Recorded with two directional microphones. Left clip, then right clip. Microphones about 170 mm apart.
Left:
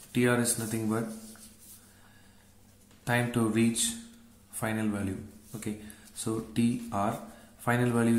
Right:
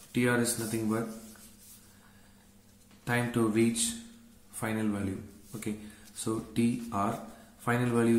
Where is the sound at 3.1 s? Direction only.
20° left (ahead or behind).